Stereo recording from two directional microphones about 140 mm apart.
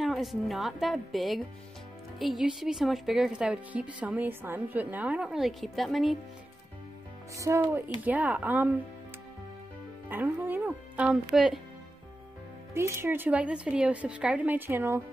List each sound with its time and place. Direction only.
0.0 s a woman's voice: centre (ahead or behind)
7.3 s speech: 20° right (ahead or behind)
8.0 s speech: 10° right (ahead or behind)
10.0 s speech: 15° right (ahead or behind)
12.7 s speech: 20° right (ahead or behind)